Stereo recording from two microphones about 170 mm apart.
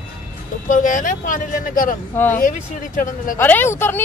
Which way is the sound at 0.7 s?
50° left (ahead or behind).